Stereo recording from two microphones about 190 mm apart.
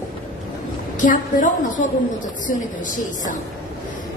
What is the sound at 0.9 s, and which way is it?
Speech, 45° left (ahead or behind).